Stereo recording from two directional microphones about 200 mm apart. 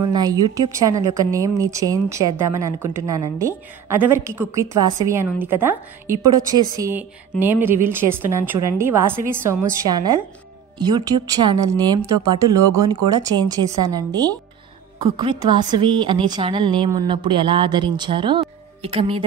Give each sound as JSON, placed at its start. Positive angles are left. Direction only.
{"t": 0.1, "sound": "a woman's voice", "side_deg": -20}